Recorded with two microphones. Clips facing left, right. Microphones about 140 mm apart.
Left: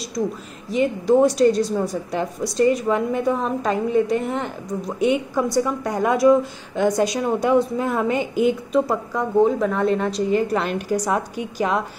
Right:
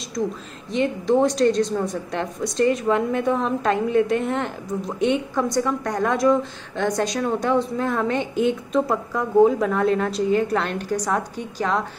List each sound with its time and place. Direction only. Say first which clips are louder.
0.7 s a woman's voice: left 2 dB; 5° left (ahead or behind)